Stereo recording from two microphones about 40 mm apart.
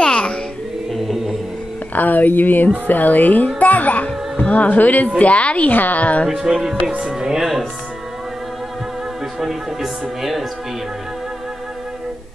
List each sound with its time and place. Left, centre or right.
0.0 s music: left
0.9 s music: centre
2.0 s a child's voice: left
5.7 s speech: left
6.2 s speech: centre
9.4 s music: centre